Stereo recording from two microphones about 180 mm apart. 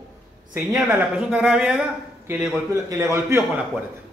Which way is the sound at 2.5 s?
15° right (ahead or behind).